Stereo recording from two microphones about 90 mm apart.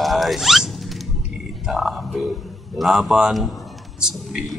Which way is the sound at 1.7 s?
5° right (ahead or behind).